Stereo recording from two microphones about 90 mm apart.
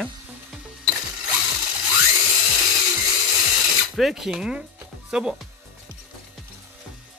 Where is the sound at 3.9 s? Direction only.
Centre (ahead or behind).